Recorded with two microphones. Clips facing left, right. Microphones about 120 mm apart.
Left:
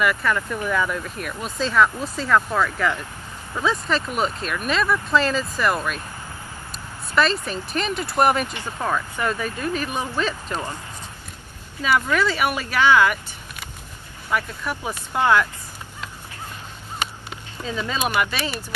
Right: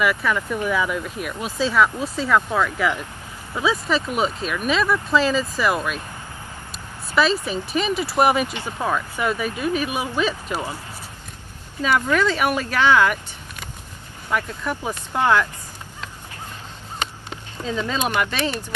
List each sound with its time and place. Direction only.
0.0 s speech: centre (ahead or behind)
12.2 s speech: 5° left (ahead or behind)
17.0 s a sound: 10° left (ahead or behind)
17.7 s speech: 5° left (ahead or behind)